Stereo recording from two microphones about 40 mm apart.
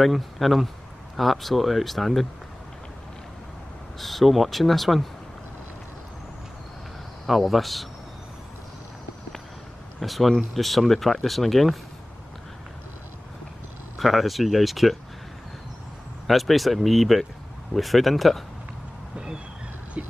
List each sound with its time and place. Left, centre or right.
0.0 s speech: centre
4.0 s speech: centre
7.2 s speech: centre
10.0 s speech: centre
13.9 s speech: centre
16.3 s speech: centre
19.1 s a sound: centre
20.0 s a sound: right